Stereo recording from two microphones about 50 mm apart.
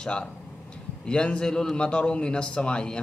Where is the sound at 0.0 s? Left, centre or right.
Centre.